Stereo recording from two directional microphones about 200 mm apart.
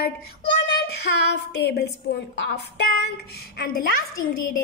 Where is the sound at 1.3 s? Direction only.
55° left (ahead or behind).